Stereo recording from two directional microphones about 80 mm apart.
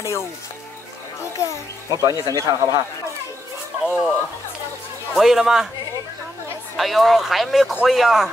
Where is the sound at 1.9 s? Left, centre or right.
Right.